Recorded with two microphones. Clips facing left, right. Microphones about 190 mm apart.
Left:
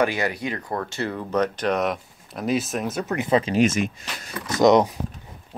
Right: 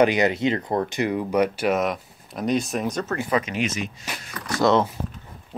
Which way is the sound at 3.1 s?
20° left (ahead or behind).